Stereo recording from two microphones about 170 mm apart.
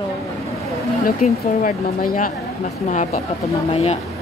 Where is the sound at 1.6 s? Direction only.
55° left (ahead or behind); by 4.0 s 40° left (ahead or behind).